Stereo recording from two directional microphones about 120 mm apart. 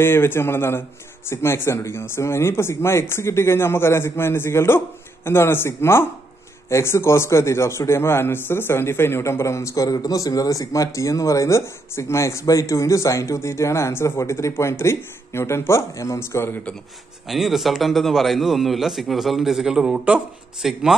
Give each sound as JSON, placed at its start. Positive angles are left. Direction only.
{"t": 0.0, "sound": "a man's voice", "side_deg": 20}
{"t": 17.3, "sound": "a man's voice", "side_deg": 0}